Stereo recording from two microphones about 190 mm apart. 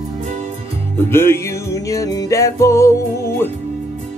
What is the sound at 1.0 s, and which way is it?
Music, 10° left (ahead or behind).